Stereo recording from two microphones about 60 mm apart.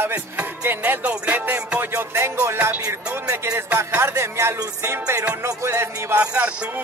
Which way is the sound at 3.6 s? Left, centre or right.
Right.